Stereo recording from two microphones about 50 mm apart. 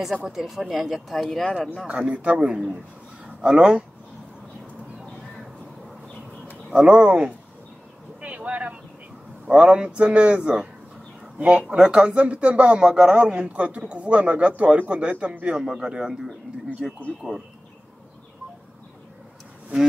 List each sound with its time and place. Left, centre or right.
0.2 s speech: centre
1.9 s a man's voice: right
6.7 s a man's voice: right
8.2 s vehicle: right
9.5 s a man's voice: right
16.8 s speech: centre
17.2 s a man's voice: right